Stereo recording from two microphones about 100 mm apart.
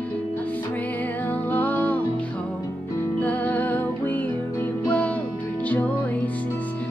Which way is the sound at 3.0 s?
15° left (ahead or behind).